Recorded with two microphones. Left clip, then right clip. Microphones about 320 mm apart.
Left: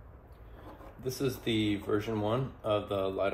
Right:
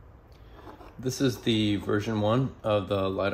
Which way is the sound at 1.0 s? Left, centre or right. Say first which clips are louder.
Right 5 dB; right.